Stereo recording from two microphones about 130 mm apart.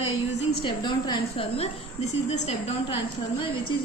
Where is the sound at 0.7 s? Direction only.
35° left (ahead or behind); by 3.0 s 55° left (ahead or behind).